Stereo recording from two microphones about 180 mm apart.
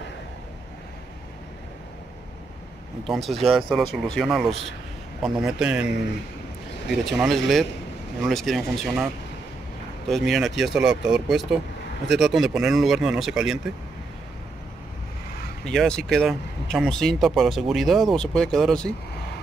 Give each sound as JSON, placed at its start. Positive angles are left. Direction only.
{"t": 3.0, "sound": "speech", "side_deg": 0}
{"t": 7.1, "sound": "speech", "side_deg": 0}
{"t": 15.6, "sound": "speech", "side_deg": 5}